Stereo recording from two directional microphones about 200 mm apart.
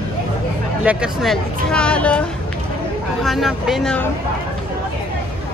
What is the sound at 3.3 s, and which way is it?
Speech, centre (ahead or behind).